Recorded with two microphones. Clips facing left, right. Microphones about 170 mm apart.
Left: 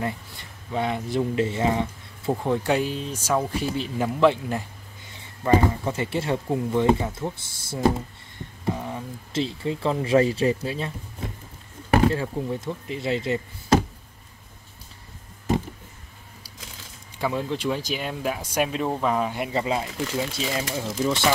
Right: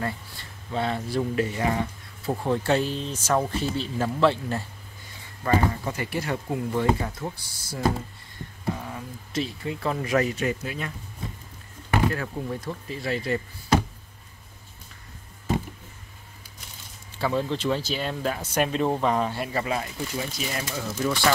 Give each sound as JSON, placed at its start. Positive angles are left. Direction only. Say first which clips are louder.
{"t": 0.0, "sound": "speech", "louder": "left 2 dB", "side_deg": 15}
{"t": 8.9, "sound": "speech", "louder": "left 2 dB", "side_deg": 25}
{"t": 11.9, "sound": "speech", "louder": "left 4 dB", "side_deg": 25}
{"t": 17.2, "sound": "speech", "louder": "even", "side_deg": 10}
{"t": 19.4, "sound": "speech", "louder": "left 2 dB", "side_deg": 20}